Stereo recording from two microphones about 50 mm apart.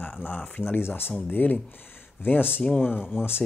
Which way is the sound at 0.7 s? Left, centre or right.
Left.